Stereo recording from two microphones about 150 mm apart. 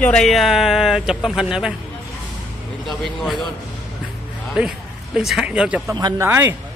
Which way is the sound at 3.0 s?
Centre (ahead or behind).